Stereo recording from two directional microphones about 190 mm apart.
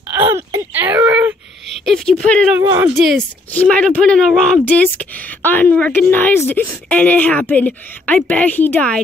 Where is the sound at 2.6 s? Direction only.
20° right (ahead or behind).